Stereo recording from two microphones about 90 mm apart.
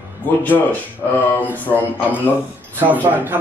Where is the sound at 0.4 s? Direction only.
20° left (ahead or behind).